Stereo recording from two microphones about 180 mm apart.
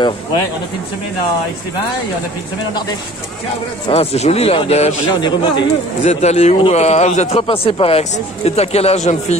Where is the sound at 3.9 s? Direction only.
35° left (ahead or behind).